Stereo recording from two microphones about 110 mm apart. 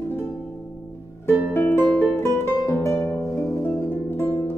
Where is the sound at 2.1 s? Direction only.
25° left (ahead or behind).